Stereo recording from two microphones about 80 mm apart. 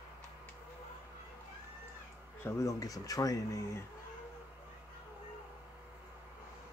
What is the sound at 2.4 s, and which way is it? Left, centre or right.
Speech, left.